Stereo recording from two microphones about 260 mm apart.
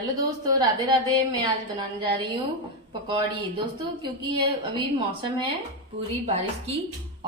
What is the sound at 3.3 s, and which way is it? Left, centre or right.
A woman's voice, centre.